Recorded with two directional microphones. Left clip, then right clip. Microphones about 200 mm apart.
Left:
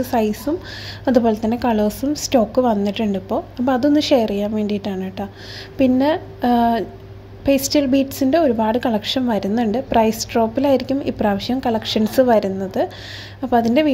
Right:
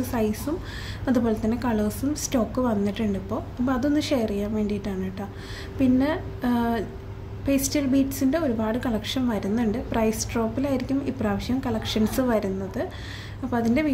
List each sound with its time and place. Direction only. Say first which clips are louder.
0.0 s a woman's voice: left 7 dB; 30° left (ahead or behind)